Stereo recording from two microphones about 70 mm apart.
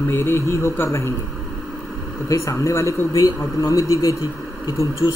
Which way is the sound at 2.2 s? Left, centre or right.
Left.